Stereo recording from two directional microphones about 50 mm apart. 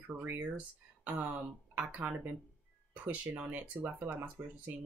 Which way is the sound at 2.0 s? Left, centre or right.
Right.